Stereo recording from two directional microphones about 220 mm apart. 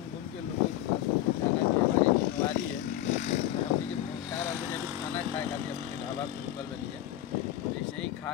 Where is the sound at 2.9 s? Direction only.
35° left (ahead or behind).